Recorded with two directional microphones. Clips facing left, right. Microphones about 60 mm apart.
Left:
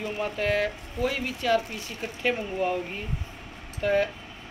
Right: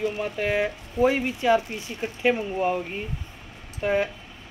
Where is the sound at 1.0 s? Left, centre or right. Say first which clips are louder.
Right 6 dB; right.